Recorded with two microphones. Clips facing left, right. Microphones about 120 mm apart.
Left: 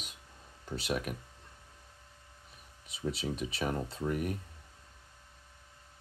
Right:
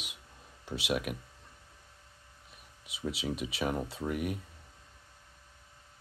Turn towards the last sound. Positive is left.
turn(degrees=-5)  # may be behind; listen again after turning